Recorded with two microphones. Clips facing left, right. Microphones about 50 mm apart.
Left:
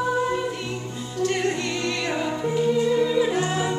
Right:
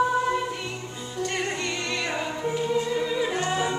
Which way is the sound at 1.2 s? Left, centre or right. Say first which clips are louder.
Left 5 dB; centre.